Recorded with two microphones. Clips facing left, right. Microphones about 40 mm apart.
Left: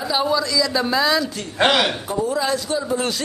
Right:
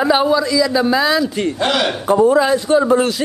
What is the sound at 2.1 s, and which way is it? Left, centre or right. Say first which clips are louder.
Speech: right 10 dB; right.